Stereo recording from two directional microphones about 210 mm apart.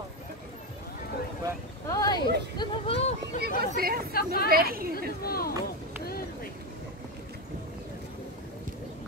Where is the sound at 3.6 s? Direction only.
45° right (ahead or behind).